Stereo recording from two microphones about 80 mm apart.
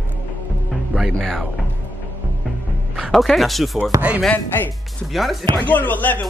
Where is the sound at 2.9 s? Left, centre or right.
Centre.